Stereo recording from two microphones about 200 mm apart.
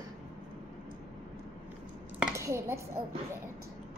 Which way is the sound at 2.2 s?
15° right (ahead or behind).